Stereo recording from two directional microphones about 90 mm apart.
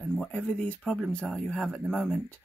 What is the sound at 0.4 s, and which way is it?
Speech, 15° left (ahead or behind).